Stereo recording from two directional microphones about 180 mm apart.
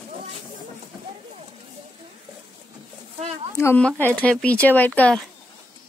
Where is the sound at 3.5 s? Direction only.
10° left (ahead or behind).